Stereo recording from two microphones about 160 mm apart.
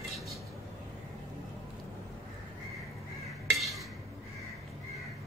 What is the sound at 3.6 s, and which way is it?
Dishes, centre (ahead or behind).